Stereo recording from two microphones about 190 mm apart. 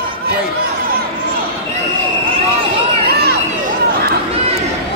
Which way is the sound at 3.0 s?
55° right (ahead or behind).